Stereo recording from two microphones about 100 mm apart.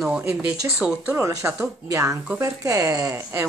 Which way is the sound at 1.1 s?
30° right (ahead or behind).